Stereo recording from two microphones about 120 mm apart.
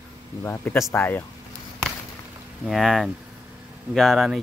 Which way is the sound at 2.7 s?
Centre (ahead or behind).